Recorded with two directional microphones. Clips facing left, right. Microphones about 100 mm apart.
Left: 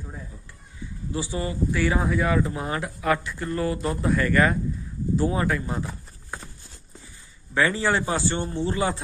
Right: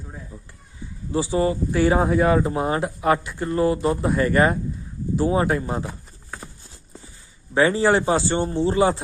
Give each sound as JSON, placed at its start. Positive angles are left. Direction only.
{"t": 1.1, "sound": "speech", "side_deg": -30}
{"t": 7.5, "sound": "speech", "side_deg": -25}